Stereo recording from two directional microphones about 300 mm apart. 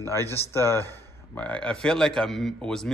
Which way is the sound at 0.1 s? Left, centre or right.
Centre.